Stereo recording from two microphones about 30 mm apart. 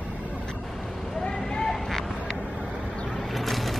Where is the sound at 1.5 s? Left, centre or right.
Centre.